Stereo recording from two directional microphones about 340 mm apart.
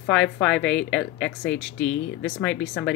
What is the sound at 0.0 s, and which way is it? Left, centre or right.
Speech, centre.